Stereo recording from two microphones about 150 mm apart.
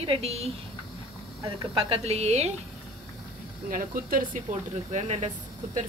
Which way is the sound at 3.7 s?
70° right (ahead or behind).